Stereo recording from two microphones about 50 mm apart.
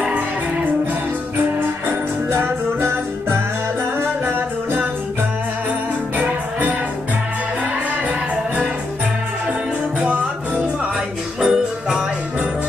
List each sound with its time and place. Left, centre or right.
2.3 s music: right
6.1 s music: right
9.9 s music: right
11.4 s music: centre